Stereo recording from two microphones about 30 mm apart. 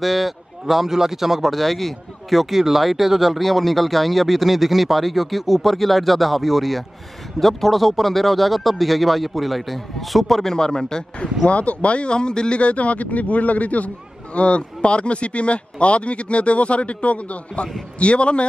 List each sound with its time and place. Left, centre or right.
0.0 s a man's voice: centre
1.5 s speech: centre
10.5 s a man's voice: centre
11.4 s a man's voice: left
12.1 s a man's voice: left